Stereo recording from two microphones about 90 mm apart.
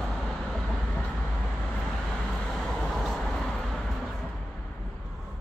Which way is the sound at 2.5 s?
5° left (ahead or behind).